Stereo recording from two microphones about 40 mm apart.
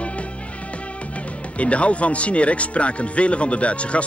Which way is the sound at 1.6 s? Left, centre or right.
Left.